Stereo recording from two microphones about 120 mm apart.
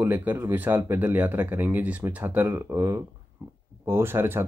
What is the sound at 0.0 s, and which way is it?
Speech, 15° right (ahead or behind).